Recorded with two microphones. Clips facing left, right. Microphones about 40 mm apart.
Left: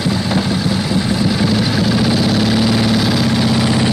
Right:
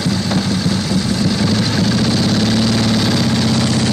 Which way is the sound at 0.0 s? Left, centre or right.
Centre.